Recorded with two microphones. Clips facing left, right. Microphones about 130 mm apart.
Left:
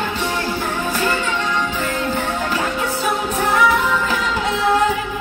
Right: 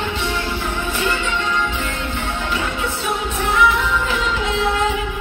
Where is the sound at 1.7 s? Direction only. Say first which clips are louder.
Left 4 dB; 40° left (ahead or behind).